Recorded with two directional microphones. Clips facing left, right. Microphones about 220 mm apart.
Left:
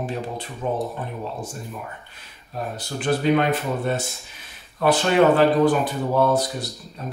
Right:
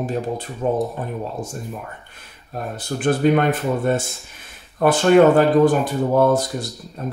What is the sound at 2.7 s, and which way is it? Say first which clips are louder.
Speech: right 4 dB; 50° right (ahead or behind).